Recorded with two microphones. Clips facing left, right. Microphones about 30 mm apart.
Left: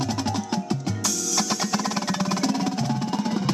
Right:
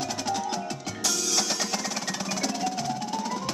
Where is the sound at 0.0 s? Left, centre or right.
Centre.